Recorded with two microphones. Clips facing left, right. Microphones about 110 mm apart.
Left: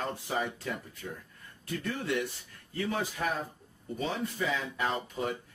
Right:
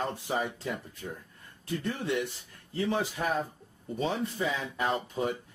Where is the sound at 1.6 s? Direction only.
20° right (ahead or behind).